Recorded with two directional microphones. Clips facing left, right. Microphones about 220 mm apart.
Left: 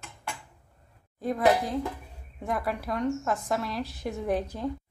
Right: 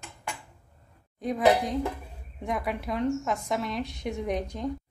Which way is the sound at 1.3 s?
Centre (ahead or behind).